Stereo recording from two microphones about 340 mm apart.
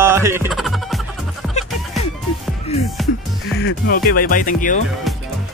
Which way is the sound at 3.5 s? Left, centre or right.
Left.